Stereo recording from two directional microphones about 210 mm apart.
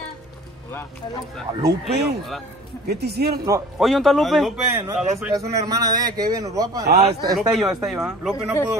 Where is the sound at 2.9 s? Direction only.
50° right (ahead or behind).